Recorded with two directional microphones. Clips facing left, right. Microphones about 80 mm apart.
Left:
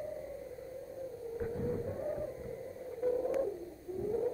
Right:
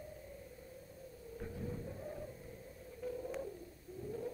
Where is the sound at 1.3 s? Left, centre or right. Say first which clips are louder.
Left 9 dB; left.